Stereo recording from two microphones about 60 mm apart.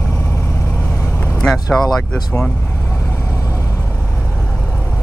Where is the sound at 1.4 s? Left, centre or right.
Centre.